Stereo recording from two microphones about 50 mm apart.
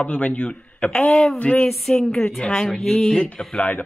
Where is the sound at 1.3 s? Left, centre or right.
Left.